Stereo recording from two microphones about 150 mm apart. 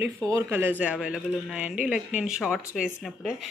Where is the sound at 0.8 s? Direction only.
5° right (ahead or behind).